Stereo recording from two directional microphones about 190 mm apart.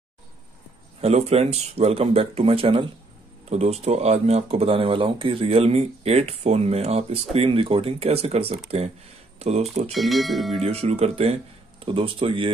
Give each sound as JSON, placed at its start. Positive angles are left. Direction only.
{"t": 1.0, "sound": "speech", "side_deg": -30}
{"t": 9.9, "sound": "speech", "side_deg": 0}
{"t": 10.6, "sound": "speech", "side_deg": -35}